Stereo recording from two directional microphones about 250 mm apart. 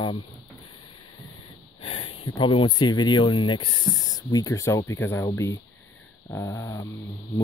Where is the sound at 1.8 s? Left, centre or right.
Left.